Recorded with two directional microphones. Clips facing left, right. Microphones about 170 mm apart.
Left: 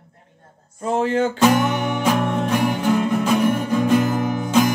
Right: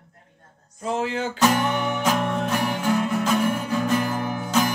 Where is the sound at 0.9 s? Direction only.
50° left (ahead or behind).